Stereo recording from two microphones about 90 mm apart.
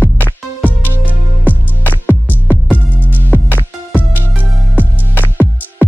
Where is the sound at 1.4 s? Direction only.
20° left (ahead or behind).